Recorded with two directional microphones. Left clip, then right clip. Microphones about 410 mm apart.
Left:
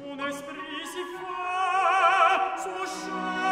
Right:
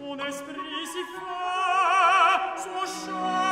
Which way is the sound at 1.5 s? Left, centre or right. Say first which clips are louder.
Right 1 dB; right.